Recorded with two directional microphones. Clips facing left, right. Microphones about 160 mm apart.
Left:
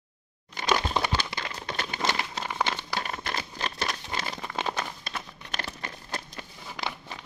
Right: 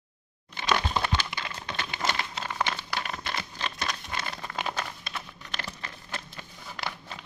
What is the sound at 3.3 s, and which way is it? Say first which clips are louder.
Patter: left 1 dB; 40° left (ahead or behind).